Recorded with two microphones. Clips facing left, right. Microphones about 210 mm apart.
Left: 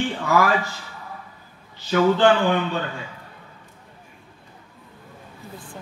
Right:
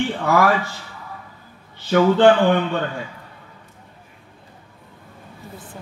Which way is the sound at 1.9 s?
50° right (ahead or behind).